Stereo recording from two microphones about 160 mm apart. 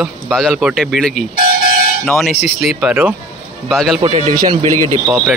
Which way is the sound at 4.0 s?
40° right (ahead or behind).